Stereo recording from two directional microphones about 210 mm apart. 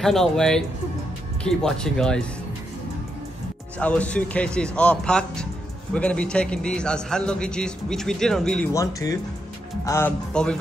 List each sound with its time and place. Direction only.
0.0 s a man's voice: centre (ahead or behind)
3.8 s a man's voice: 5° left (ahead or behind)
8.7 s a man's voice: 15° left (ahead or behind)